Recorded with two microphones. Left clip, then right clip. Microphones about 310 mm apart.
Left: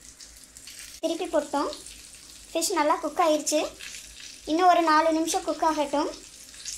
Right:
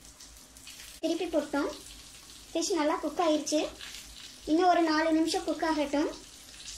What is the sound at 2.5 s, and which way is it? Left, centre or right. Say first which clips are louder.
Frying: left 5 dB; left.